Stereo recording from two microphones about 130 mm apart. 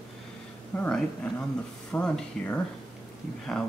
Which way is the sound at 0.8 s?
10° left (ahead or behind).